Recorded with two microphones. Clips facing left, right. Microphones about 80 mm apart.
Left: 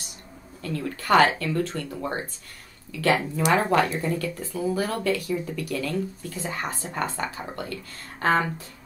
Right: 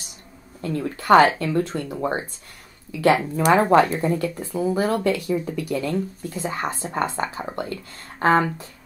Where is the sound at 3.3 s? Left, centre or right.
Right.